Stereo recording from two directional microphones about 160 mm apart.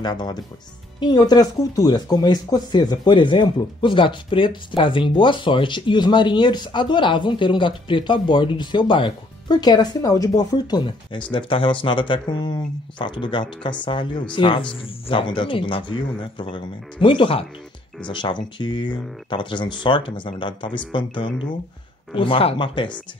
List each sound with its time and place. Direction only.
0.0 s speech: 25° left (ahead or behind)